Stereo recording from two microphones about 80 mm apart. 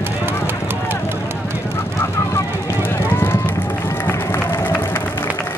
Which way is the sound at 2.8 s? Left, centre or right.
Left.